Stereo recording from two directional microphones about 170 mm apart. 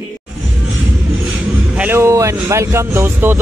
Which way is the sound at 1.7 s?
10° right (ahead or behind).